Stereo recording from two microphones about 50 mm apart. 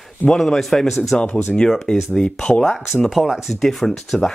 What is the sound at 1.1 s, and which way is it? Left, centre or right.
Speech, centre.